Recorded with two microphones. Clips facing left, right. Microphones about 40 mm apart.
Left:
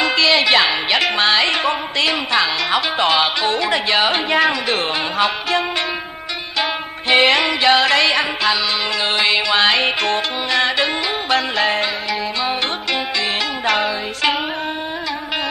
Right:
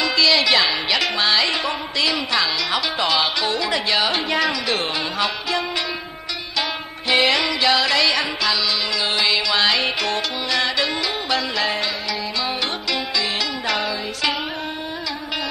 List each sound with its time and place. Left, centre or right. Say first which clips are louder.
0.0 s music: left 3 dB; left
6.6 s music: left 6 dB; left
13.7 s music: left 7 dB; left